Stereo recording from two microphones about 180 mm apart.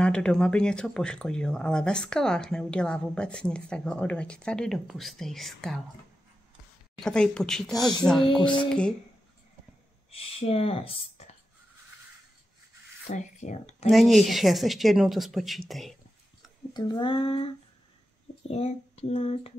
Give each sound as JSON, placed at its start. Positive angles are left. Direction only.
{"t": 0.0, "sound": "speech", "side_deg": 5}
{"t": 7.0, "sound": "speech", "side_deg": 5}
{"t": 10.1, "sound": "speech", "side_deg": 35}
{"t": 13.1, "sound": "speech", "side_deg": 40}
{"t": 13.8, "sound": "speech", "side_deg": 0}
{"t": 16.7, "sound": "speech", "side_deg": 25}
{"t": 18.5, "sound": "speech", "side_deg": 35}